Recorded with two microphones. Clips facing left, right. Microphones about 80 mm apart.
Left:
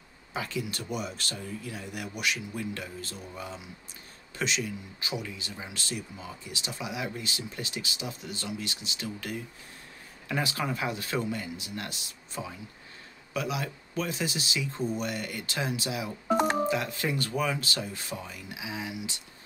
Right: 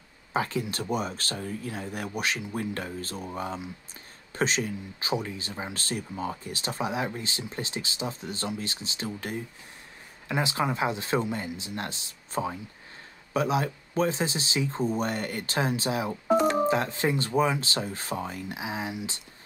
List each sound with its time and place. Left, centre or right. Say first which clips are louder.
0.3 s speech: right 5 dB; right